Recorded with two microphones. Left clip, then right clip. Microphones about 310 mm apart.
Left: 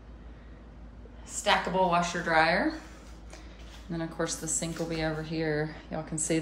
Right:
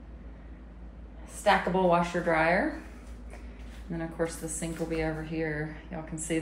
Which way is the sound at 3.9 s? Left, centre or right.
Centre.